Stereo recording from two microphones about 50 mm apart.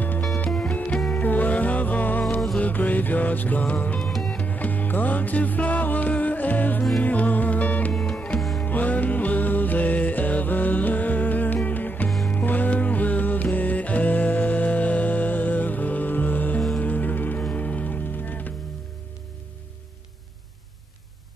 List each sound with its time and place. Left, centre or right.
0.5 s music: centre
1.2 s music: left
4.0 s music: centre
4.4 s music: left
7.9 s music: centre
8.6 s music: left
17.4 s music: left